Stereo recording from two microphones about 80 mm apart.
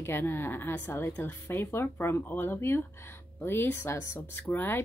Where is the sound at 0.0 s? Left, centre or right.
Left.